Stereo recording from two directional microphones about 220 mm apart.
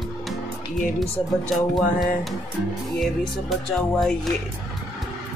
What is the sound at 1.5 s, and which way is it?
Speech, centre (ahead or behind).